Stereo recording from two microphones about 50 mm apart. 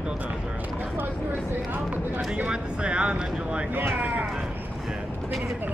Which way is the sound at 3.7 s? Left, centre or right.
Right.